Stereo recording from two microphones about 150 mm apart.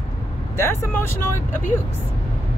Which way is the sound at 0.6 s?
15° left (ahead or behind).